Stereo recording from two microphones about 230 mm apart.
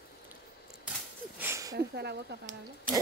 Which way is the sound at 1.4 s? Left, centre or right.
Centre.